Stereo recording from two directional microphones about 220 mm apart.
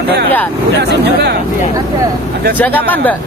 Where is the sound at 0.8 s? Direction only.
50° right (ahead or behind).